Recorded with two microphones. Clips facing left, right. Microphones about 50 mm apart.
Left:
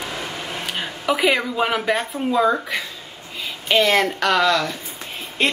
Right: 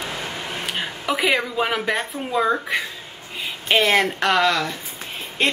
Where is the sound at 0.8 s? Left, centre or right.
Centre.